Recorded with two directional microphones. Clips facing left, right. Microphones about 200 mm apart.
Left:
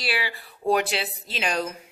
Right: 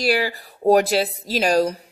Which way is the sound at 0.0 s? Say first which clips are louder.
Right 9 dB; 40° right (ahead or behind).